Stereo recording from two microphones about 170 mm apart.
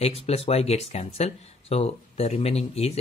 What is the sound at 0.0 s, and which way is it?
Speech, 35° left (ahead or behind).